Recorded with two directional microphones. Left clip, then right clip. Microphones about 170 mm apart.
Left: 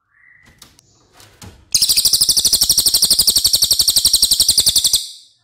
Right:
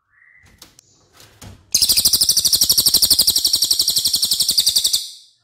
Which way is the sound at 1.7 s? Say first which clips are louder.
Left 1 dB; 5° left (ahead or behind).